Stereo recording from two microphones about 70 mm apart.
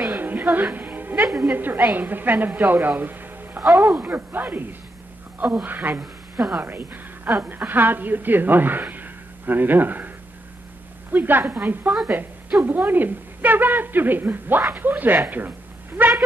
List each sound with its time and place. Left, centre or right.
0.1 s music: right
1.4 s a woman's voice: right
3.0 s music: right
3.6 s speech: centre
4.1 s a woman's voice: right
12.1 s a sound: right
12.6 s a woman's voice: right
16.0 s a sound: right